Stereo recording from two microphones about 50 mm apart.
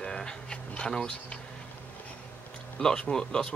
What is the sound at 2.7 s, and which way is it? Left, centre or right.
Speech, centre.